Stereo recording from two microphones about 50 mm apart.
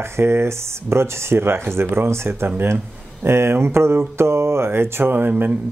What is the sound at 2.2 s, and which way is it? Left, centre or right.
Speech, right.